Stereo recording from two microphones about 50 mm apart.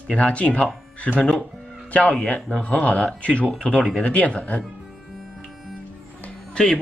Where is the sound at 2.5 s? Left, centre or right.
Left.